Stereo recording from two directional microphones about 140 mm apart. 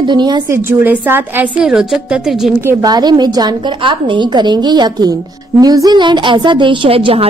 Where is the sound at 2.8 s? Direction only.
30° right (ahead or behind).